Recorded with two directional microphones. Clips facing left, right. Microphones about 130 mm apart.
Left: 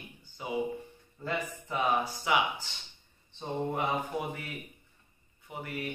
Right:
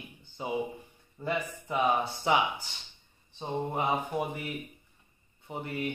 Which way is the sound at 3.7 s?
20° right (ahead or behind).